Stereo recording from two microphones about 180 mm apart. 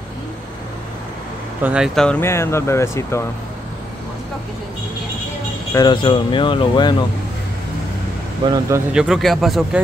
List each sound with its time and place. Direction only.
1.6 s speech: 5° right (ahead or behind); by 3.3 s 15° left (ahead or behind)
5.7 s speech: 25° left (ahead or behind)
8.5 s speech: 15° right (ahead or behind)
8.9 s speech: centre (ahead or behind)